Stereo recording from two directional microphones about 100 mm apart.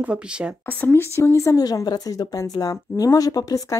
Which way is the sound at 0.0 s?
10° right (ahead or behind).